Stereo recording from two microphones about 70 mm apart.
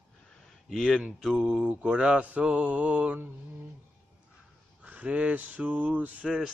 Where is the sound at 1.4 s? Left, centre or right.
Centre.